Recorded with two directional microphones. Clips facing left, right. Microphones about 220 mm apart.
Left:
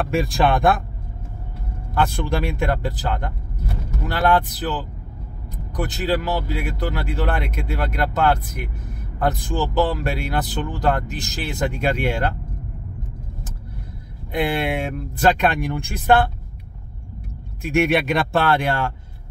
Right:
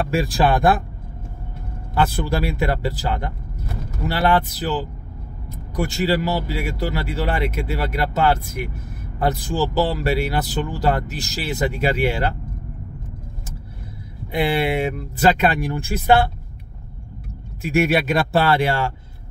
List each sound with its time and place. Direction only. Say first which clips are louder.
0.1 s speech: even; centre (ahead or behind)
2.0 s speech: right 1 dB; 5° right (ahead or behind)
14.3 s speech: right 2 dB; 5° right (ahead or behind)
17.7 s speech: even; centre (ahead or behind)